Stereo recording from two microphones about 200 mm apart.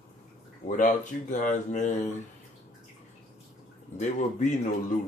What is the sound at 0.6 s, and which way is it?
Speech, 40° left (ahead or behind).